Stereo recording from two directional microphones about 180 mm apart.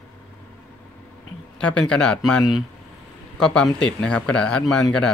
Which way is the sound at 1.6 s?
5° left (ahead or behind).